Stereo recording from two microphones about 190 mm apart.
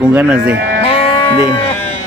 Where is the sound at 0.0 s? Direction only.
5° right (ahead or behind).